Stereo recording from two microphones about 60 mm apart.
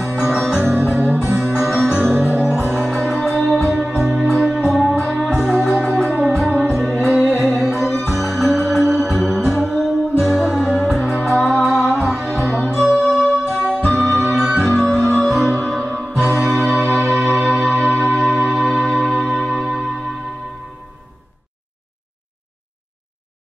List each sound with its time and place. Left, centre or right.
0.4 s music: centre
2.5 s music: right
2.8 s music: centre